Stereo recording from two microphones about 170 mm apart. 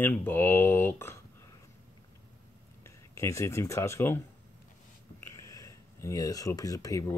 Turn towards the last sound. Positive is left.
turn(degrees=20)  # may be behind; listen again after turning